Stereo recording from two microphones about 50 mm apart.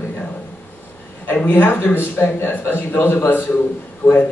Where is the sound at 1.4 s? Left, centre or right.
Left.